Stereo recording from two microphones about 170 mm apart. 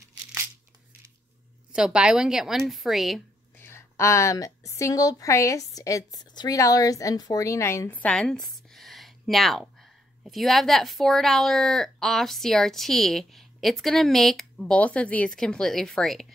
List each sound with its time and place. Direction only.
1.7 s a woman's voice: 5° right (ahead or behind)
3.5 s a woman's voice: 15° left (ahead or behind)